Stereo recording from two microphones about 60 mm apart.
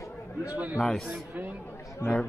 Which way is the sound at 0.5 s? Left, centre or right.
Right.